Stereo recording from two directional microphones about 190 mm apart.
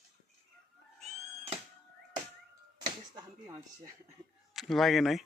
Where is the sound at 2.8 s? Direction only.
20° right (ahead or behind).